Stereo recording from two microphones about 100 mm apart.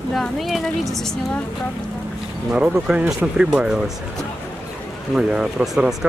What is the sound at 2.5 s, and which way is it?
Speech, 10° right (ahead or behind).